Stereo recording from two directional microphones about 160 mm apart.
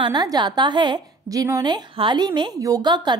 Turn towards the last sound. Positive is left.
turn(degrees=-30)  # may be behind; listen again after turning